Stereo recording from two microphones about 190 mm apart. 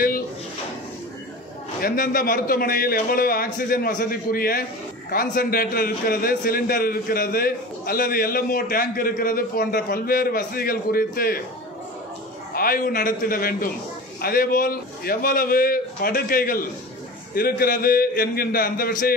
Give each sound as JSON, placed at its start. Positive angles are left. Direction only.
{"t": 1.8, "sound": "a man's voice", "side_deg": 50}
{"t": 12.5, "sound": "a man's voice", "side_deg": 50}